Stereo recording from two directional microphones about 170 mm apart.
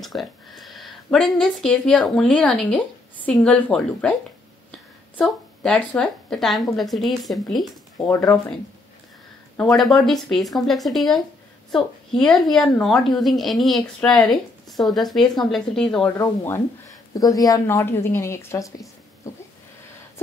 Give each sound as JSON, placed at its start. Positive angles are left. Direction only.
{"t": 0.0, "sound": "a woman's voice", "side_deg": 0}
{"t": 9.8, "sound": "a woman's voice", "side_deg": 0}
{"t": 16.2, "sound": "a woman's voice", "side_deg": 15}